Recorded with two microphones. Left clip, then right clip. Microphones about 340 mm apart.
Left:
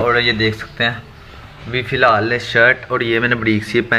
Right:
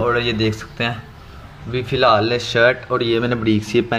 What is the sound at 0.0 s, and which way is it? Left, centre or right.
A man's voice, centre.